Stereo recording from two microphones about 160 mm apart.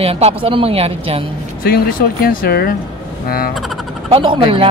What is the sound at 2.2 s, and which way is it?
Speech, 70° left (ahead or behind).